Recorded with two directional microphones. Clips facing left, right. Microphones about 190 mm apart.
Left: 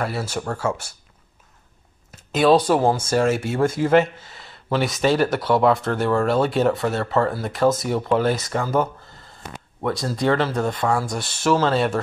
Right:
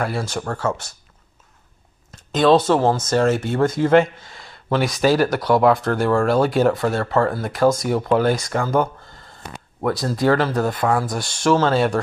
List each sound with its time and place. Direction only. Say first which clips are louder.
0.0 s speech: right 2 dB; 5° left (ahead or behind)
2.0 s speech: right 1 dB; 5° left (ahead or behind)
9.8 s speech: right 3 dB; centre (ahead or behind)